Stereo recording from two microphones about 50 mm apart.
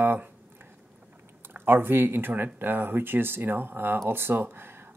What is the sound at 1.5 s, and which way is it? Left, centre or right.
Speech, right.